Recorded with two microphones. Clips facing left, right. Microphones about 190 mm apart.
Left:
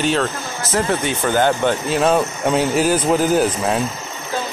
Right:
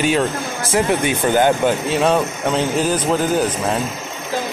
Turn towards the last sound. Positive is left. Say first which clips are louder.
# left 1 dB
turn(degrees=5)  # may be behind; listen again after turning